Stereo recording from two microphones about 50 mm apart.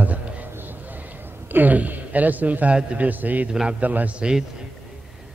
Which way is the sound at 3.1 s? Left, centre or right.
Right.